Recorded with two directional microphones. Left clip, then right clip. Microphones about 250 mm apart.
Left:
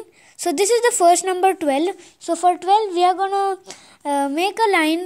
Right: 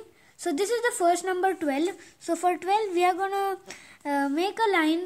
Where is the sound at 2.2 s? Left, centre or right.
Left.